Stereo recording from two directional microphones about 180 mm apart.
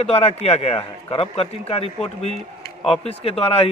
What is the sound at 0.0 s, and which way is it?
A man's voice, 35° left (ahead or behind).